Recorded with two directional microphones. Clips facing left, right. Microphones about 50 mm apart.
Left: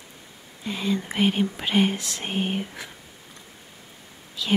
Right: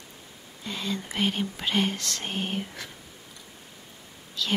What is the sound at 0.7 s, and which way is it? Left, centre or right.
Speech, centre.